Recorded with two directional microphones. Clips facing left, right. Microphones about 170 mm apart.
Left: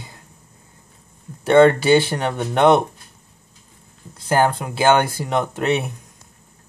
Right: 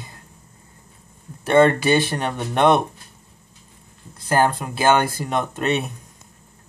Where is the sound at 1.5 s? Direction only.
20° left (ahead or behind).